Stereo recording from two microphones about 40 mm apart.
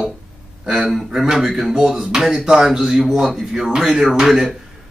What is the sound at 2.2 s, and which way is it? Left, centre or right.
Speech, centre.